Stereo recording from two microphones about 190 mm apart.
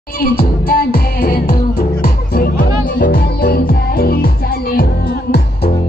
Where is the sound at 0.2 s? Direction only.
50° left (ahead or behind).